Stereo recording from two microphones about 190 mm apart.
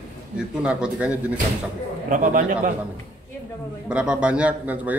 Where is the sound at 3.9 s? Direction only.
5° right (ahead or behind).